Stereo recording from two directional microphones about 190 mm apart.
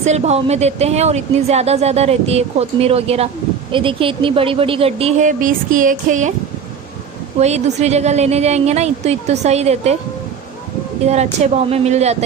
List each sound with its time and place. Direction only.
0.0 s speech: 35° right (ahead or behind)
5.4 s music: 45° right (ahead or behind)
7.3 s speech: 35° right (ahead or behind)
11.4 s speech: 35° right (ahead or behind)